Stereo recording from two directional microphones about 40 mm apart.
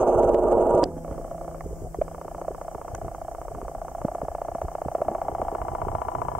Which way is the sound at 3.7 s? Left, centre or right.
Centre.